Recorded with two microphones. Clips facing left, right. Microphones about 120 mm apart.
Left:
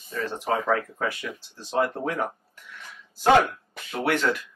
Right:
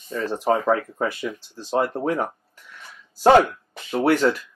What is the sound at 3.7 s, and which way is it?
Speech, 35° right (ahead or behind).